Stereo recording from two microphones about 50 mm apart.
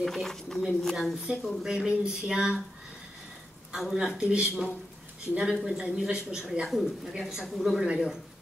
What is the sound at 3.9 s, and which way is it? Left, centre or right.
Speech, centre.